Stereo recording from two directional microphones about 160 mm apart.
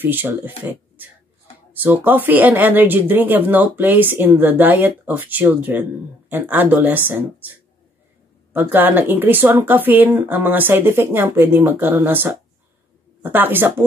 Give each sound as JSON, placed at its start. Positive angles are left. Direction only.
{"t": 0.0, "sound": "speech", "side_deg": -10}
{"t": 8.5, "sound": "speech", "side_deg": -10}